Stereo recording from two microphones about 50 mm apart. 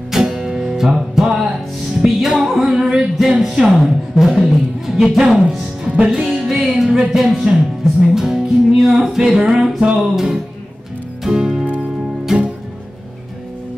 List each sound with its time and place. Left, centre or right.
0.1 s music: centre
4.3 s speech: centre
6.0 s music: centre
7.1 s speech: centre
8.1 s music: centre
11.6 s music: right